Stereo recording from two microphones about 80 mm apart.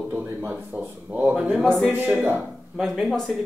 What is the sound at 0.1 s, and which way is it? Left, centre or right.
Speech, right.